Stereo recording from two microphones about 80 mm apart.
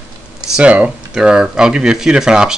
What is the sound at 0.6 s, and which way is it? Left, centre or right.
Speech, centre.